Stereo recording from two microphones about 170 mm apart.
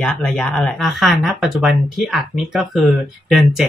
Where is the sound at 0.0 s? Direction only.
5° left (ahead or behind).